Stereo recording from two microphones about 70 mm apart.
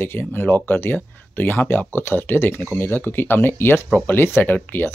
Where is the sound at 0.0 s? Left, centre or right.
Left.